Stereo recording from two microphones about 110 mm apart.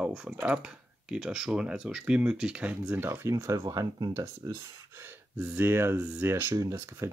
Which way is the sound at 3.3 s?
30° right (ahead or behind).